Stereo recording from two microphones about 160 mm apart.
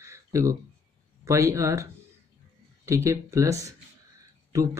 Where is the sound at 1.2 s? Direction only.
15° right (ahead or behind).